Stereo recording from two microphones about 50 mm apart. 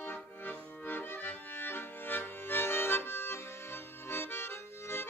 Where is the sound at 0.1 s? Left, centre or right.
Left.